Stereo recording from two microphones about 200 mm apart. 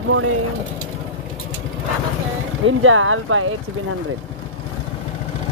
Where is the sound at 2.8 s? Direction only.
90° right.